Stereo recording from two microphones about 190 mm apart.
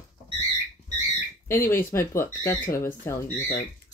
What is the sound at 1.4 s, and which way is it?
Speech, 15° left (ahead or behind).